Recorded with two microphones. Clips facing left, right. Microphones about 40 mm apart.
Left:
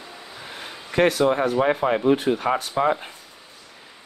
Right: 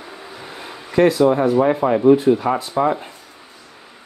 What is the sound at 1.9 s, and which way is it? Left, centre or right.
Speech, left.